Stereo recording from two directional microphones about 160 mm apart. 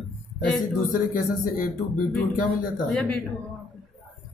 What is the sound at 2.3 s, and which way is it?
Speech, 55° left (ahead or behind).